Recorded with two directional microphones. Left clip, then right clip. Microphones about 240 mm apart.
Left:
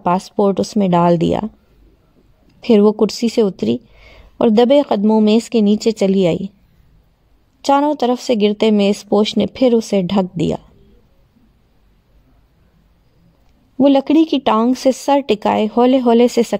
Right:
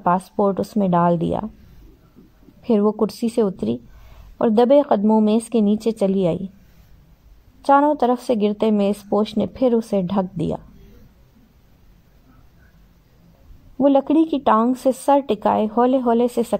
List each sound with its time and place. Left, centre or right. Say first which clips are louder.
0.0 s speech: left 3 dB; left
2.6 s speech: left 7 dB; left
7.7 s speech: left 1 dB; left
13.7 s speech: left 4 dB; left